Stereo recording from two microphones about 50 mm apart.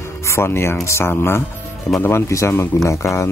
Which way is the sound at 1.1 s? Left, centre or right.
Left.